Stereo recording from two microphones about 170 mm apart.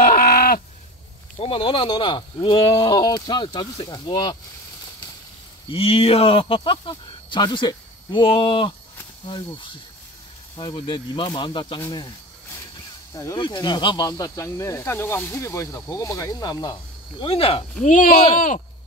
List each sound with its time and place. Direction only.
0.0 s livestock: 55° left (ahead or behind)
1.4 s speech: 35° left (ahead or behind)
5.7 s speech: 35° left (ahead or behind)
10.6 s speech: 30° left (ahead or behind)
13.1 s speech: 20° left (ahead or behind)
17.8 s speech: 50° left (ahead or behind)